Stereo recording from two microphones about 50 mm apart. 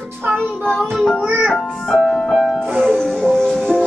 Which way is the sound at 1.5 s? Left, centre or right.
Centre.